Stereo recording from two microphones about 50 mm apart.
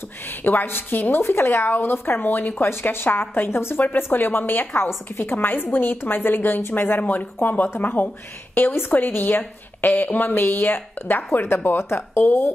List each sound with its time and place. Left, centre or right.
0.3 s a woman's voice: left
2.7 s a woman's voice: left
3.8 s a woman's voice: left